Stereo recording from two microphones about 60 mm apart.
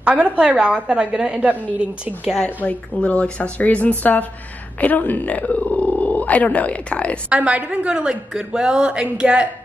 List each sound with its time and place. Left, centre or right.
0.0 s a woman's voice: centre
0.8 s a woman's voice: centre
2.4 s speech: left
7.2 s a woman's voice: right